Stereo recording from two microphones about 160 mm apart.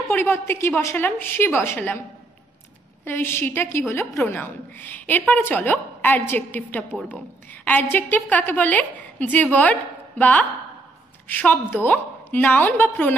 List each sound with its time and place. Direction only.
0.1 s a woman's voice: 15° left (ahead or behind)
3.1 s a woman's voice: 15° left (ahead or behind)